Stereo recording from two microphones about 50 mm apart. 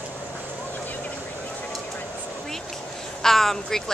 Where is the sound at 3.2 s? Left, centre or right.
Centre.